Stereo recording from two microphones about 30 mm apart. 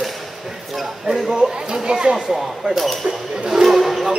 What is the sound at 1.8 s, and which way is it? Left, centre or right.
Speech, right.